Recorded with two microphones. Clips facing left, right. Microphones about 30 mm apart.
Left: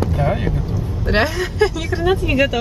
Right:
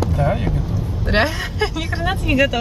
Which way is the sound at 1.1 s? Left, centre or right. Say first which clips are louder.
Left 1 dB; centre.